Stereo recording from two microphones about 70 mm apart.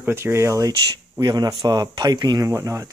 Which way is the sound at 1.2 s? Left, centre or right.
Right.